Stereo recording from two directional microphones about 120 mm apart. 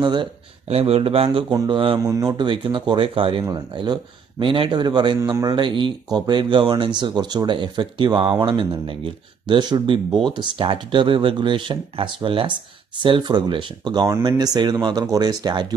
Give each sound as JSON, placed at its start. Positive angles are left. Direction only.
{"t": 0.0, "sound": "speech", "side_deg": -40}
{"t": 0.7, "sound": "speech", "side_deg": -60}
{"t": 1.5, "sound": "speech", "side_deg": -30}
{"t": 3.4, "sound": "a man's voice", "side_deg": -35}
{"t": 5.6, "sound": "speech", "side_deg": -40}